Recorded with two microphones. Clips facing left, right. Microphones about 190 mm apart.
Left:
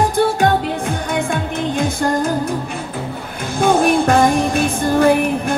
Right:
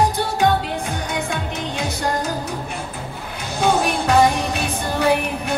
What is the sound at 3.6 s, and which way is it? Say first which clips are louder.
Music: left 5 dB; 50° left (ahead or behind).